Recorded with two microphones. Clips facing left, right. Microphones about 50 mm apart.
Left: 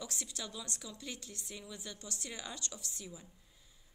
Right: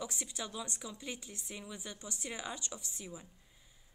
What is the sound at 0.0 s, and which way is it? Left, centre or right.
A woman's voice, centre.